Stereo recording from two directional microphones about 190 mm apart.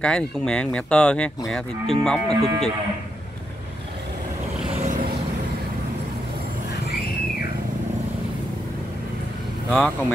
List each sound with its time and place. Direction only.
0.0 s speech: 5° left (ahead or behind)
4.8 s vehicle: 45° right (ahead or behind)
9.7 s speech: 5° left (ahead or behind)